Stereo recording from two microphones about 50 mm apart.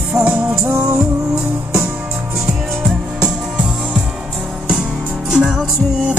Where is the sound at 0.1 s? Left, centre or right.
Right.